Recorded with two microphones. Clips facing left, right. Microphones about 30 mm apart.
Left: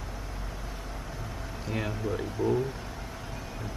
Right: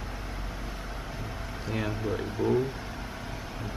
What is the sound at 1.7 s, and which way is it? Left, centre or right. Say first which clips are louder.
Speech: right 1 dB; centre.